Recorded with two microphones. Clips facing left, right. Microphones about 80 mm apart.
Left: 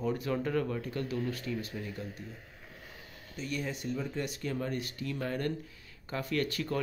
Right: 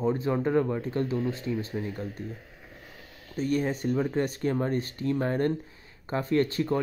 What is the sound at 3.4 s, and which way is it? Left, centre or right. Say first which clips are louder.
Speech: right 9 dB; right.